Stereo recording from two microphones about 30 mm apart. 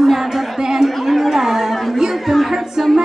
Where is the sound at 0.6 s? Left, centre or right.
Centre.